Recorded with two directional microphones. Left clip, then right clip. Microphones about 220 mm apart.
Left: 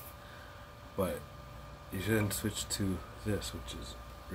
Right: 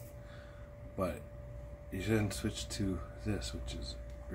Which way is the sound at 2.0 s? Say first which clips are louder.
Left 2 dB; 10° left (ahead or behind).